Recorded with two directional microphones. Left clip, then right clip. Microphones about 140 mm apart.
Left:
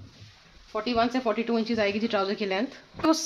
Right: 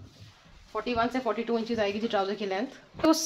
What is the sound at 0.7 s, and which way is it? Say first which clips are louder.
Speech: left 3 dB; 45° left (ahead or behind).